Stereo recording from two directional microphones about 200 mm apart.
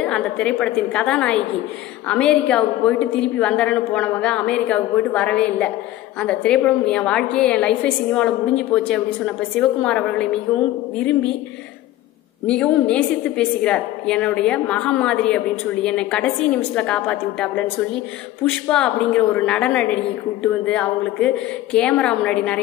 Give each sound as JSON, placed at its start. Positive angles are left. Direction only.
{"t": 0.0, "sound": "a woman's voice", "side_deg": 5}
{"t": 12.4, "sound": "a woman's voice", "side_deg": 5}